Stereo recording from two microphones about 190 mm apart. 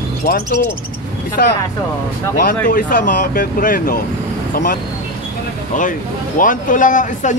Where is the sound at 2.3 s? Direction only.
45° left (ahead or behind).